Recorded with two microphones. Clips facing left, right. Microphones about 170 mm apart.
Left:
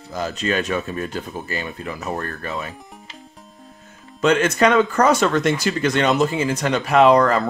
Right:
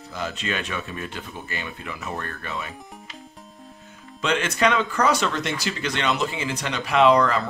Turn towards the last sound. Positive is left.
turn(degrees=45)  # may be behind; listen again after turning